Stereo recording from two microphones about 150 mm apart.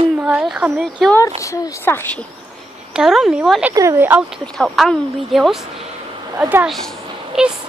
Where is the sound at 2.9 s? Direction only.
5° right (ahead or behind).